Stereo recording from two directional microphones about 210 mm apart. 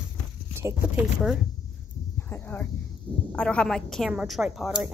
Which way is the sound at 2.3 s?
10° left (ahead or behind).